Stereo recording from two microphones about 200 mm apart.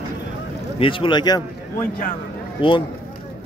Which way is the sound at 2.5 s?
25° left (ahead or behind).